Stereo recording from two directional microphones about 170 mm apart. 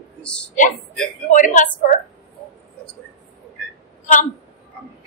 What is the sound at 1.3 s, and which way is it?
Speech, 50° left (ahead or behind).